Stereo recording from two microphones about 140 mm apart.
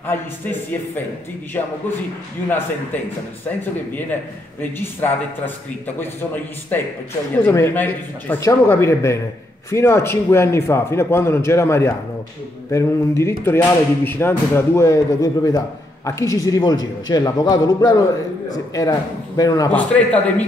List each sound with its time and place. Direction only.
0.0 s a man's voice: 15° left (ahead or behind)
3.9 s a man's voice: 15° left (ahead or behind)
7.4 s a man's voice: 15° left (ahead or behind)
19.7 s a man's voice: 10° left (ahead or behind)